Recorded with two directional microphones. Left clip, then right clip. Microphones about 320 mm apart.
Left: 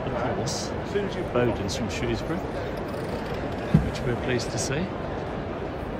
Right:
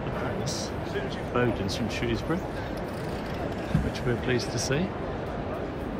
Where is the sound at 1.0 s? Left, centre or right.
Left.